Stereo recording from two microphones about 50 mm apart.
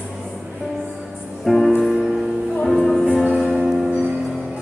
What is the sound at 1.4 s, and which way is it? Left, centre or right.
Music, centre.